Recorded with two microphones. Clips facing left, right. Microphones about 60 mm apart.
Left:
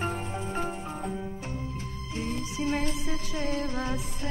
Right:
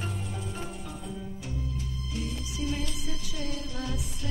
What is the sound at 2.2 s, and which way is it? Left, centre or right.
Music, left.